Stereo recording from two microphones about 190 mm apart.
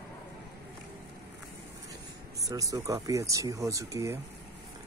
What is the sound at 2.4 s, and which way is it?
Speech, 20° right (ahead or behind).